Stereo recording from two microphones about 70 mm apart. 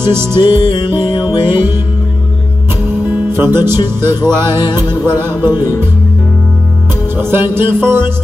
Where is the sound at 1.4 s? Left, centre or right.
Right.